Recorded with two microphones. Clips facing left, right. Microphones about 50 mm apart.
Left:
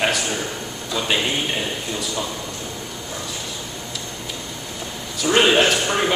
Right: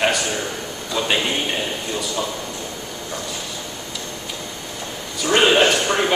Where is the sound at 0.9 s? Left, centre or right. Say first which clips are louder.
Right 1 dB; centre.